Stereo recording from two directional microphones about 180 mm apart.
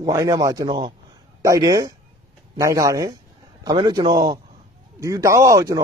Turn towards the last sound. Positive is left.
turn(degrees=-20)  # may be behind; listen again after turning